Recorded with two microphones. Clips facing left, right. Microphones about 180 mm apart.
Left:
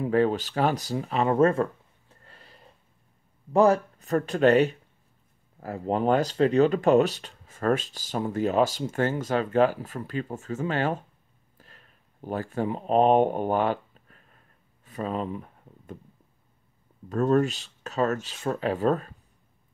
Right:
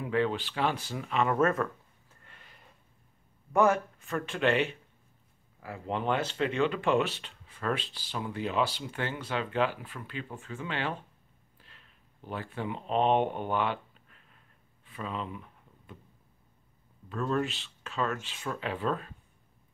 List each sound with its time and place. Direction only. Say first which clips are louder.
0.0 s speech: left 6 dB; 40° left (ahead or behind)
11.5 s a sound: left 5 dB; 45° left (ahead or behind)
17.1 s speech: left 8 dB; 45° left (ahead or behind)